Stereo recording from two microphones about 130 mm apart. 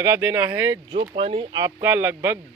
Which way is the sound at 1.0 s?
45° right (ahead or behind).